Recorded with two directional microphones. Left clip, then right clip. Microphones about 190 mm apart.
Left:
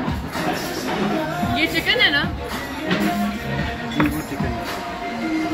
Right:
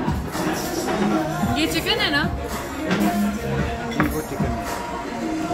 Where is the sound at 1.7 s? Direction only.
65° right (ahead or behind).